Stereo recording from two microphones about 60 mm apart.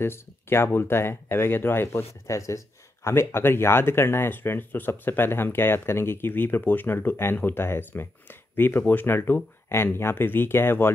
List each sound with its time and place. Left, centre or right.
0.0 s speech: left
2.2 s speech: left